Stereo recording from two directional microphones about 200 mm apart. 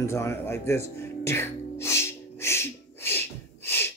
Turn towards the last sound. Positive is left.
turn(degrees=10)  # may be behind; listen again after turning